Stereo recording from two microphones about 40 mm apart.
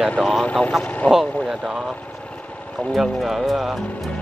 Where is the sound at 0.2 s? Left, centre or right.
Centre.